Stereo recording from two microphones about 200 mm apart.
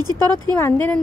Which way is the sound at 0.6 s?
10° left (ahead or behind).